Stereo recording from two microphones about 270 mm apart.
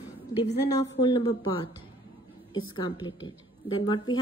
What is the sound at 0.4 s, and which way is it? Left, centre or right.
A woman's voice, centre.